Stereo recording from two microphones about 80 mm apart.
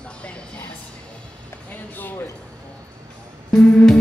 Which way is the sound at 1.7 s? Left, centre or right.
Left.